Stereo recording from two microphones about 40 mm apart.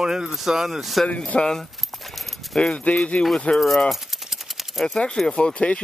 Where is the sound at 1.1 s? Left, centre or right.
Left.